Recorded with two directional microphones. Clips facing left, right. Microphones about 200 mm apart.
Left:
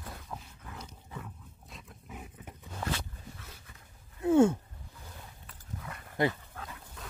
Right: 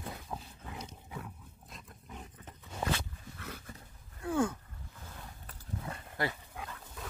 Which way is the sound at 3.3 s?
60° right (ahead or behind).